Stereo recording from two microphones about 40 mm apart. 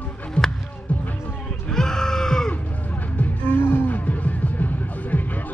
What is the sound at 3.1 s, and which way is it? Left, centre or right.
Music, left.